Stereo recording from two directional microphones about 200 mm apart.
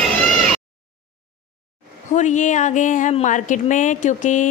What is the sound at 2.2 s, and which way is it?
Speech, 40° left (ahead or behind).